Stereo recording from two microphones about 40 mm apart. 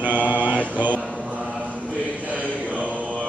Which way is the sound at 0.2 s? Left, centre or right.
Right.